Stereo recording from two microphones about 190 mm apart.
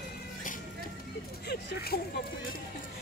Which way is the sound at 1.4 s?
55° left (ahead or behind).